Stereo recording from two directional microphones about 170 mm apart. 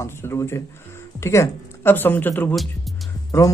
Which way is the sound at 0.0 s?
15° left (ahead or behind).